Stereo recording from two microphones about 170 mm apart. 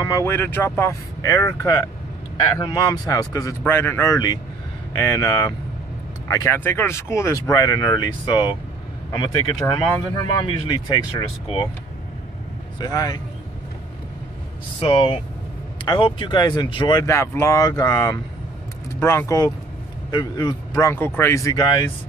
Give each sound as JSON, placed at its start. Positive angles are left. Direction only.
{"t": 0.0, "sound": "speech", "side_deg": 15}
{"t": 12.7, "sound": "speech", "side_deg": 25}
{"t": 14.8, "sound": "speech", "side_deg": 35}